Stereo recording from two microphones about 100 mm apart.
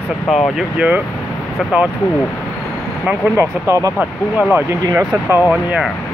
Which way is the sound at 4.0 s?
15° right (ahead or behind).